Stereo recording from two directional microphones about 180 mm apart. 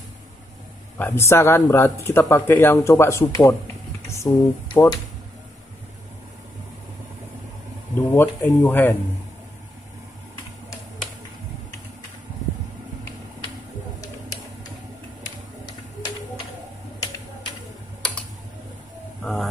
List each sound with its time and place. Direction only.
0.9 s speech: 10° left (ahead or behind)
8.1 s speech: 10° left (ahead or behind)
19.2 s a sound: centre (ahead or behind)